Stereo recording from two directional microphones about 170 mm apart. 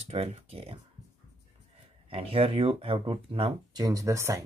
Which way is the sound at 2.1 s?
35° right (ahead or behind).